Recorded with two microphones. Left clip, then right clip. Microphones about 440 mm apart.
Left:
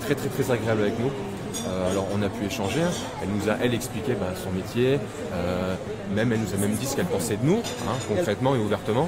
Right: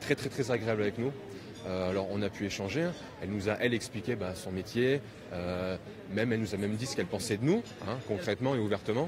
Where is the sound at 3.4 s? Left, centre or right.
Left.